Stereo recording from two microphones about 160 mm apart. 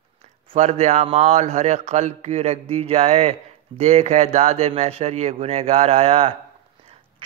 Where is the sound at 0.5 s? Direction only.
45° right (ahead or behind).